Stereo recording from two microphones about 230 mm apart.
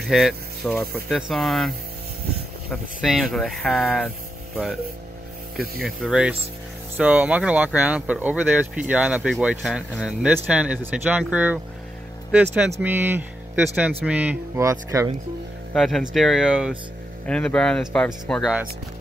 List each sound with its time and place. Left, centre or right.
0.1 s speech: centre
2.7 s speech: centre
5.8 s speech: centre
15.7 s speech: centre